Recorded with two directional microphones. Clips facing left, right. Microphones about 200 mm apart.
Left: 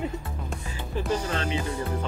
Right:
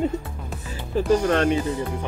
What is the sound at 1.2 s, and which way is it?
Speech, 60° right (ahead or behind).